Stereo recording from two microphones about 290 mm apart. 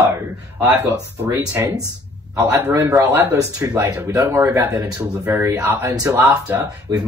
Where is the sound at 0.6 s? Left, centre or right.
Centre.